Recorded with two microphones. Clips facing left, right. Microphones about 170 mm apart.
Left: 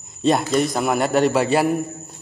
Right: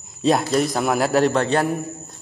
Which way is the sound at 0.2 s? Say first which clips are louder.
Even; centre (ahead or behind).